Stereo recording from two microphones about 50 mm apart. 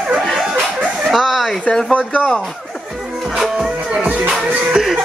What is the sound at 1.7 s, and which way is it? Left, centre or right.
Speech, centre.